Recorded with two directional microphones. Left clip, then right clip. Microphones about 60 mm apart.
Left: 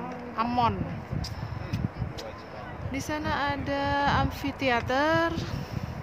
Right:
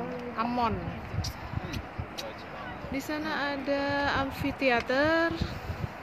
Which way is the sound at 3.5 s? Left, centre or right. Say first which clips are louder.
Left 1 dB; centre.